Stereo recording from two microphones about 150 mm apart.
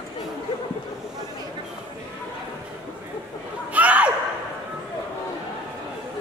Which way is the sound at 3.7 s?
10° right (ahead or behind).